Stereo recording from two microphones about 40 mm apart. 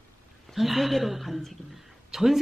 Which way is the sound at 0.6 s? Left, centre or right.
Centre.